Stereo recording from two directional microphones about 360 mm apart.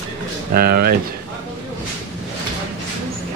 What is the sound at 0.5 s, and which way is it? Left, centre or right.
Speech, right.